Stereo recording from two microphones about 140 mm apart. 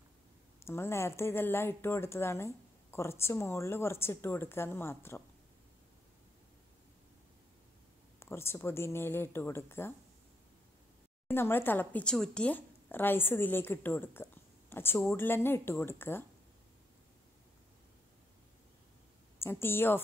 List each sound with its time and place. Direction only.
0.7 s speech: 20° left (ahead or behind)
8.2 s speech: 20° left (ahead or behind)
11.2 s speech: 15° left (ahead or behind)
19.4 s speech: 15° left (ahead or behind)